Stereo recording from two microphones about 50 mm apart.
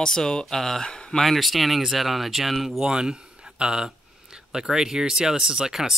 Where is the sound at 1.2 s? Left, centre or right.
Centre.